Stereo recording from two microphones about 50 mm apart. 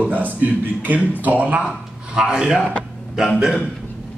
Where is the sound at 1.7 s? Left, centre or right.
Centre.